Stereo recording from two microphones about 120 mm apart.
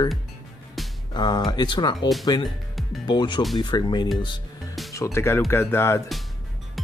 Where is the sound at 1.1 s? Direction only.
40° left (ahead or behind).